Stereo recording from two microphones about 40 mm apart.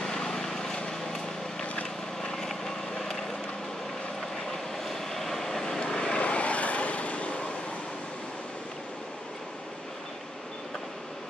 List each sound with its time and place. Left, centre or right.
0.0 s vehicle: centre
1.6 s vehicle: left
2.3 s vehicle: centre
4.8 s vehicle: centre
5.9 s vehicle: left